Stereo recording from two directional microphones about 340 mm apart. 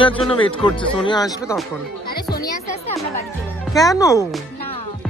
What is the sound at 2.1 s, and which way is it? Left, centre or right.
Music, left.